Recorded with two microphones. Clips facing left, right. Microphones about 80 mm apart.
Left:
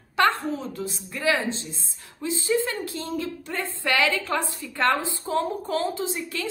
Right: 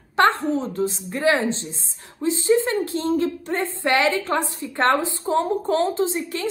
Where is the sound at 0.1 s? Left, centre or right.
Right.